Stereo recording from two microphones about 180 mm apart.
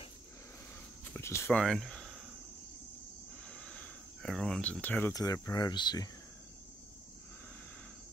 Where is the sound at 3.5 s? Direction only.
5° left (ahead or behind); by 6.1 s 25° left (ahead or behind).